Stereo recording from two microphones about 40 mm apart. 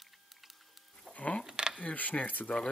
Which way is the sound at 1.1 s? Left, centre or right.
Left.